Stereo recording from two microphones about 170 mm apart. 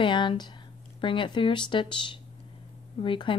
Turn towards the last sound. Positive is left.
turn(degrees=30)  # may be behind; listen again after turning